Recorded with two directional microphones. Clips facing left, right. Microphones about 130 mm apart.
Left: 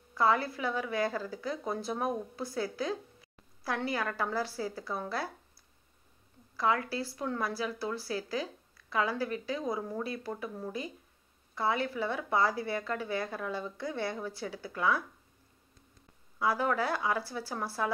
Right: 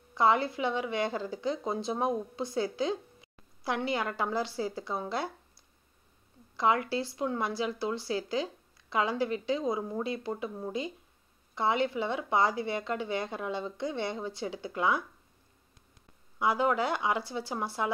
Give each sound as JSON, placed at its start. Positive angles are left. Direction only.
{"t": 0.1, "sound": "a woman's voice", "side_deg": -25}
{"t": 6.5, "sound": "a woman's voice", "side_deg": -20}
{"t": 16.3, "sound": "a woman's voice", "side_deg": -20}